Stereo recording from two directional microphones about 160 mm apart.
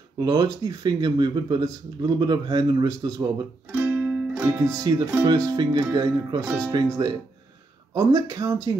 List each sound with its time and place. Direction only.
0.2 s speech: 25° right (ahead or behind)
3.7 s music: 15° right (ahead or behind)
5.1 s speech: 20° right (ahead or behind)